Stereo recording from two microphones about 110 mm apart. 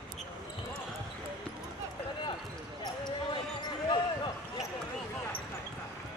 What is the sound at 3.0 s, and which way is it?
Basketball bounce, 45° left (ahead or behind).